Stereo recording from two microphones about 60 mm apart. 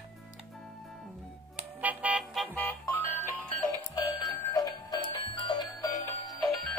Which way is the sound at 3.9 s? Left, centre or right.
Left.